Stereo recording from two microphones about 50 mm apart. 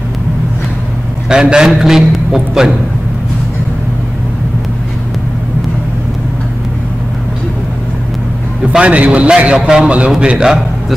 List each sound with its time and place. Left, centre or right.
1.3 s a man's voice: centre
8.7 s a man's voice: right